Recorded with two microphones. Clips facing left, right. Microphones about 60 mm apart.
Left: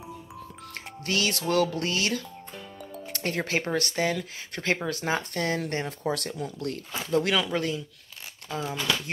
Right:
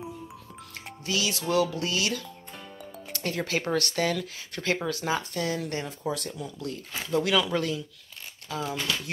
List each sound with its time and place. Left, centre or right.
1.0 s music: left
1.5 s speech: left
7.4 s speech: left